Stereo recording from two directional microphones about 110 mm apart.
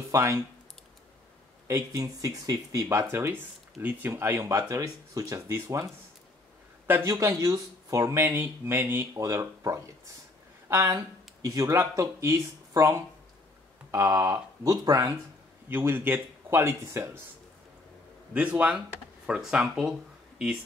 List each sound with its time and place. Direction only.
0.1 s speech: 25° right (ahead or behind)
1.7 s speech: 30° right (ahead or behind)
3.1 s speech: 20° right (ahead or behind)
6.9 s speech: 25° right (ahead or behind)
9.1 s speech: 30° right (ahead or behind)
15.7 s speech: 20° right (ahead or behind)
18.3 s speech: 10° right (ahead or behind)